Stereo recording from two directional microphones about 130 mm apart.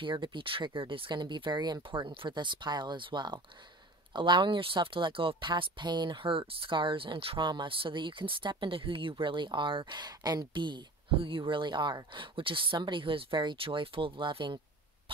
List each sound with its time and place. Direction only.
0.0 s speech: 40° right (ahead or behind)
15.1 s hum: 40° right (ahead or behind)